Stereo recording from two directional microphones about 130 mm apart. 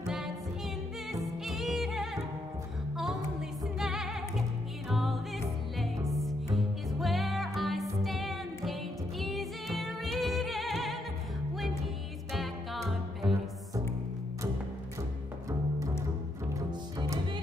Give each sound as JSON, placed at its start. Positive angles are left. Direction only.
{"t": 0.0, "sound": "music", "side_deg": -5}
{"t": 12.3, "sound": "music", "side_deg": 0}
{"t": 16.5, "sound": "cello", "side_deg": -25}